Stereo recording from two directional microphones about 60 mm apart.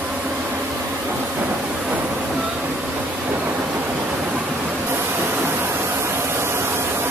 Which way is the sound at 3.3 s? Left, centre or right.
Right.